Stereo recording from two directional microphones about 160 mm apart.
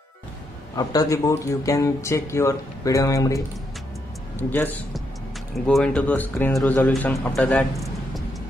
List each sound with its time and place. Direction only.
0.7 s speech: 20° left (ahead or behind)
4.5 s speech: 10° left (ahead or behind)
5.5 s a man's voice: centre (ahead or behind)